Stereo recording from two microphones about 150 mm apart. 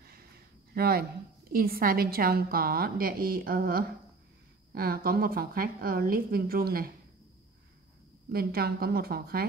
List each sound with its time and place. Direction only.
0.0 s a sound: 90° right
1.5 s a woman's voice: 80° right
8.3 s a woman's voice: 90° right